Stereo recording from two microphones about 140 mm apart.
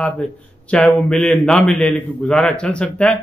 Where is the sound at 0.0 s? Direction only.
10° left (ahead or behind).